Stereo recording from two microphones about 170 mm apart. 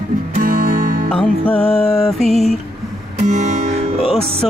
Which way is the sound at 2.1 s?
Centre (ahead or behind).